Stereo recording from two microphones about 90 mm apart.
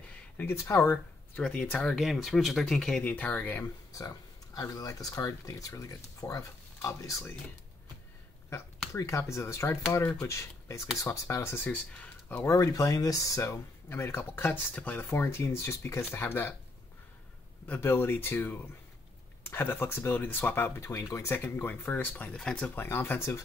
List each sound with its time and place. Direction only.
0.4 s speech: 30° left (ahead or behind)
1.4 s speech: 15° left (ahead or behind)
2.0 s speech: centre (ahead or behind)
3.0 s speech: 20° left (ahead or behind)
3.6 s speech: 35° left (ahead or behind)
8.9 s speech: 35° left (ahead or behind)
11.6 s speech: 20° left (ahead or behind)
12.4 s speech: 35° left (ahead or behind)
17.7 s speech: 25° left (ahead or behind)
22.3 s speech: 10° left (ahead or behind)
22.8 s speech: 25° left (ahead or behind)